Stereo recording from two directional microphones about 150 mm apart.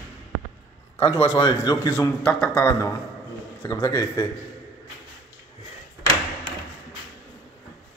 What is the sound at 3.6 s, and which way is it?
Speech, 25° left (ahead or behind).